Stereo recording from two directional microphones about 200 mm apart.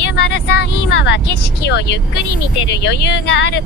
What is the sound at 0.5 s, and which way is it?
Speech, 60° left (ahead or behind).